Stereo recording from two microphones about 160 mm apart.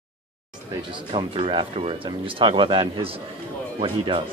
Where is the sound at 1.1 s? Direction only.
35° right (ahead or behind).